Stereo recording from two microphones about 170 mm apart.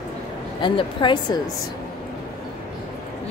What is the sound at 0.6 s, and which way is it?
Speech, 30° left (ahead or behind).